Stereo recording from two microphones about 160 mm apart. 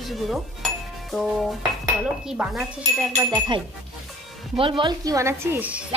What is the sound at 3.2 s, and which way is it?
A woman's voice, 25° right (ahead or behind).